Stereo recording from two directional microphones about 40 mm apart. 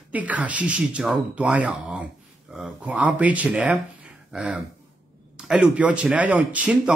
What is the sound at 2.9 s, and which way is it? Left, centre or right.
Speech, right.